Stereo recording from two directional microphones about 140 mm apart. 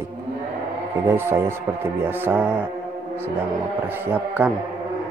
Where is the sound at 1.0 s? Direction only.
15° right (ahead or behind).